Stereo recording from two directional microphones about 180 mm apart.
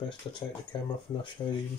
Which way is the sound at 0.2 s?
25° left (ahead or behind).